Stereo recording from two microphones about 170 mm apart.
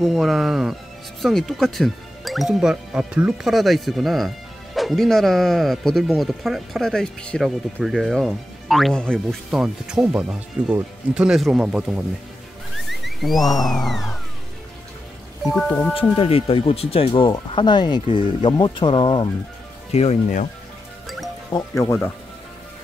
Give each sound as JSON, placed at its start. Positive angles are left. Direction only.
{"t": 0.0, "sound": "speech", "side_deg": 0}
{"t": 12.7, "sound": "a sound", "side_deg": 0}
{"t": 13.6, "sound": "speech", "side_deg": 0}
{"t": 15.4, "sound": "speech", "side_deg": 0}
{"t": 15.9, "sound": "speech", "side_deg": 35}
{"t": 19.9, "sound": "speech", "side_deg": 40}
{"t": 21.5, "sound": "speech", "side_deg": 20}